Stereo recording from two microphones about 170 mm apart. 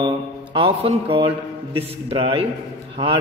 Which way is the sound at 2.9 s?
30° right (ahead or behind).